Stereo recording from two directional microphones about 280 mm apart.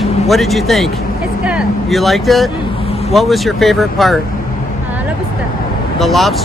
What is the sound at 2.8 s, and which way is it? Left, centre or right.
Vehicle, left.